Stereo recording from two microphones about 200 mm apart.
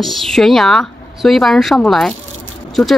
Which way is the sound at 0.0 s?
Centre (ahead or behind).